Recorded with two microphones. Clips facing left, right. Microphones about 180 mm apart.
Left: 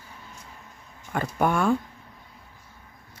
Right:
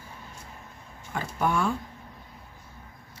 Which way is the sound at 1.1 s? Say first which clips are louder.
Left 3 dB; 55° left (ahead or behind).